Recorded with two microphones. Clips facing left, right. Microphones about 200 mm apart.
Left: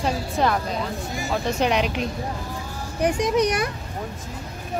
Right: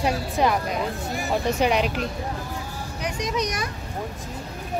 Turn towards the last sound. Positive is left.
turn(degrees=55)  # may be behind; listen again after turning